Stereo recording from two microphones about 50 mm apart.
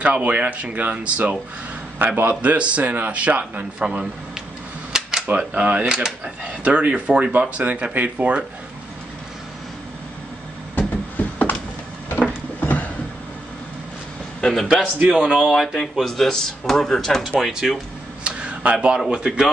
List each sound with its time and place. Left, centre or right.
0.0 s speech: right
3.8 s a man's voice: centre
5.4 s speech: right
10.8 s a sound: left
14.4 s a man's voice: centre
15.0 s speech: right
15.4 s speech: centre
16.0 s speech: centre
17.4 s a man's voice: centre
18.2 s a sound: right
18.9 s a man's voice: centre